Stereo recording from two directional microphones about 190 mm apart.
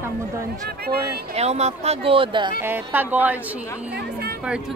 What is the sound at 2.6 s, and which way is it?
A woman's voice, 10° right (ahead or behind).